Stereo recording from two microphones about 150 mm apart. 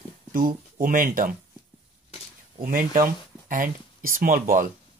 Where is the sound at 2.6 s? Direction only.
70° right (ahead or behind).